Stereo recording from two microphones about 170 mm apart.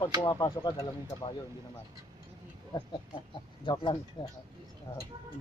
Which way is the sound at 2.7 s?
25° left (ahead or behind).